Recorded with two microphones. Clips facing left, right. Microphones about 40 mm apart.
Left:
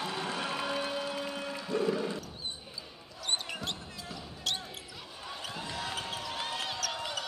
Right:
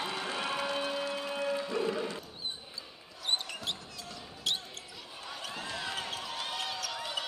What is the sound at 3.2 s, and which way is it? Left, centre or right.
Basketball bounce, centre.